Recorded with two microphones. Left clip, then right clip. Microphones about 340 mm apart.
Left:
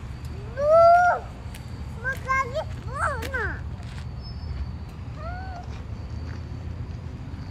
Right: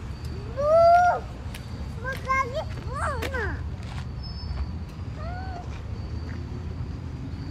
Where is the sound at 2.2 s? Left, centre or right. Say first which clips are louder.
Even; left.